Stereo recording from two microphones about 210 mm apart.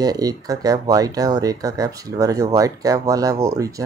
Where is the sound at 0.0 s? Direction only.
15° right (ahead or behind).